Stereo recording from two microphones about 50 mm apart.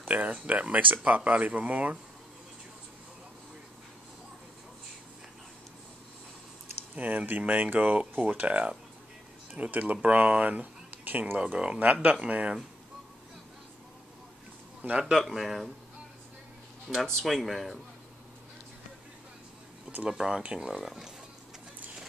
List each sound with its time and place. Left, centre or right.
0.1 s speech: right
7.0 s speech: right
11.5 s speech: centre
14.8 s a man's voice: right
15.0 s speech: centre
16.8 s speech: centre
20.1 s speech: centre